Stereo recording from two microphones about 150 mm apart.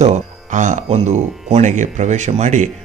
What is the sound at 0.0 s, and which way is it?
Speech, 55° right (ahead or behind).